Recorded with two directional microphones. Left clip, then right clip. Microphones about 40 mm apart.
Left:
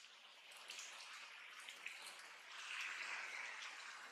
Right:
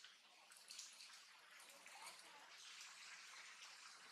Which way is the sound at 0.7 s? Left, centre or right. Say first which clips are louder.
Left 5 dB; left.